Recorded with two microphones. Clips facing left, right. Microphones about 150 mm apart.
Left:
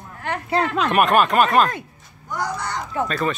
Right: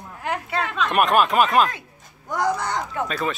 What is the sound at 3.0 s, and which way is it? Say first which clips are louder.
Speech: left 6 dB; centre (ahead or behind).